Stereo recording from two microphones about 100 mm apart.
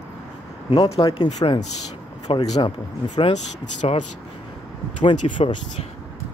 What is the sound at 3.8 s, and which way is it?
Speech, 70° left (ahead or behind).